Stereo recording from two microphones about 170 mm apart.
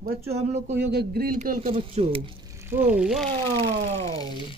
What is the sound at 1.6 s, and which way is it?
Speech, 35° right (ahead or behind).